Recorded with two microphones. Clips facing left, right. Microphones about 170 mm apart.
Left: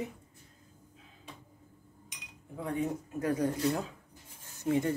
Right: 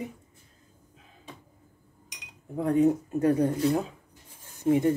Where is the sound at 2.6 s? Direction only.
40° right (ahead or behind).